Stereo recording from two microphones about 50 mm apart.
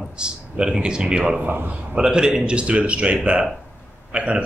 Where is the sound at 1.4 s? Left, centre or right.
Right.